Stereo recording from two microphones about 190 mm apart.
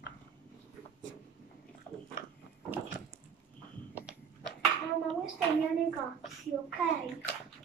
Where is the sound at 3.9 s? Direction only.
5° right (ahead or behind).